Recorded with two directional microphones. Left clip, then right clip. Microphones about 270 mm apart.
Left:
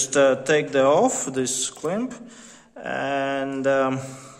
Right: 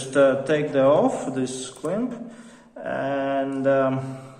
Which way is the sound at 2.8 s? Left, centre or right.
Left.